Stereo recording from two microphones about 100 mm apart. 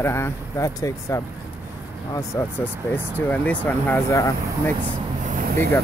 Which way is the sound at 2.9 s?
20° left (ahead or behind).